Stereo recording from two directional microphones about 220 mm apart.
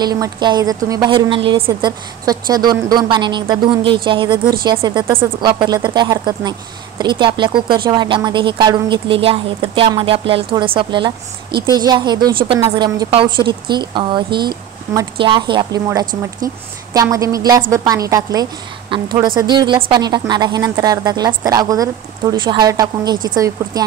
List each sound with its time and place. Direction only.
0.0 s a woman's voice: 15° right (ahead or behind)